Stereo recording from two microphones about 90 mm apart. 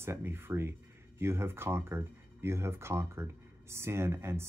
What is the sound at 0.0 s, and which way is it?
Speech, 30° right (ahead or behind).